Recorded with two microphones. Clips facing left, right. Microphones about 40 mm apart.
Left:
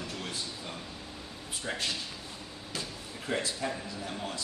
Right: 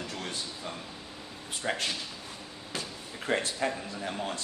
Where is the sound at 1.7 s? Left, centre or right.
Right.